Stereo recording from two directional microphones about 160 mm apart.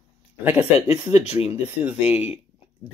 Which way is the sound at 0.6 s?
40° left (ahead or behind).